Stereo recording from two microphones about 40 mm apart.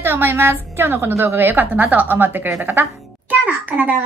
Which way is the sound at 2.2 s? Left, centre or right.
Right.